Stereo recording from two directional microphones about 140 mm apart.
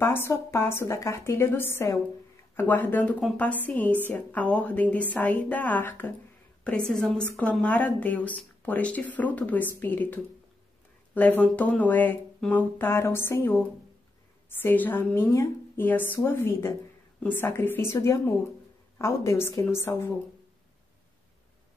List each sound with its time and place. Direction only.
0.0 s a woman's voice: 15° left (ahead or behind)